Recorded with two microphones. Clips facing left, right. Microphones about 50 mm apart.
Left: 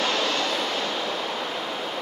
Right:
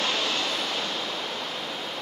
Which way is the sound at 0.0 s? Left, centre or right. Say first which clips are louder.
Left 3 dB; centre.